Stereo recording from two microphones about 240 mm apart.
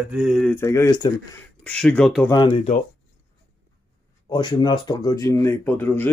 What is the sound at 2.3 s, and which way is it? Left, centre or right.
Speech, centre.